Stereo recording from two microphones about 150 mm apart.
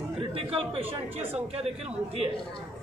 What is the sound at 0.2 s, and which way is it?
Speech, 40° right (ahead or behind).